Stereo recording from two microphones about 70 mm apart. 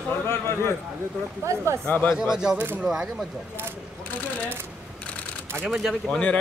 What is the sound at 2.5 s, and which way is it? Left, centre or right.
Speech, right.